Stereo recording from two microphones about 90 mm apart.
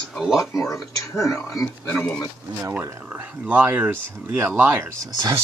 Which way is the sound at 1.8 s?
15° left (ahead or behind).